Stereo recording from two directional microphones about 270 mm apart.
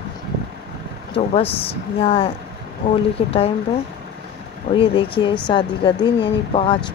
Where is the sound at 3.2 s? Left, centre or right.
Centre.